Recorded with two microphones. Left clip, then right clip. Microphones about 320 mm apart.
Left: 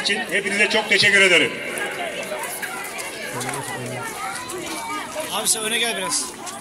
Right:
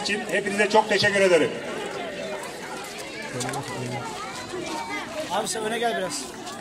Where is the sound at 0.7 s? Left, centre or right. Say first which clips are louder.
Left 2 dB; right.